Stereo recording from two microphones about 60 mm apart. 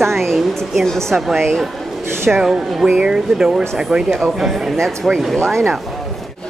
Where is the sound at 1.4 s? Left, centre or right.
Centre.